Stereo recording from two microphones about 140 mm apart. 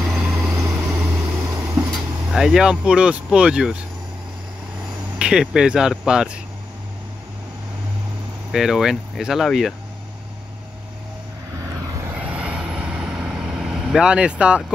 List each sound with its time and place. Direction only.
0.0 s vehicle: 5° right (ahead or behind)
0.7 s vehicle: 15° right (ahead or behind)
1.8 s speech: 5° right (ahead or behind)
5.2 s speech: 5° right (ahead or behind)
8.5 s speech: 5° right (ahead or behind)
12.2 s vehicle: 10° right (ahead or behind)